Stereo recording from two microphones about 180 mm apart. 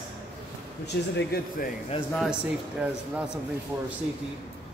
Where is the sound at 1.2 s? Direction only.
60° left (ahead or behind).